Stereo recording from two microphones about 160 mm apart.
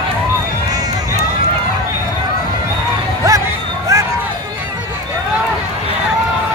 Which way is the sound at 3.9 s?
20° right (ahead or behind).